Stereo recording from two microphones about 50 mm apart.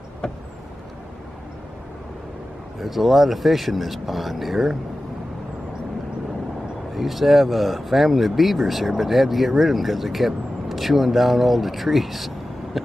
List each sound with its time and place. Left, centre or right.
0.2 s vehicle: centre
2.8 s speech: centre
7.0 s speech: centre